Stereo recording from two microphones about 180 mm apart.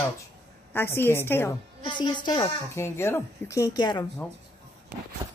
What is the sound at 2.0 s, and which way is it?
Speech, 25° left (ahead or behind).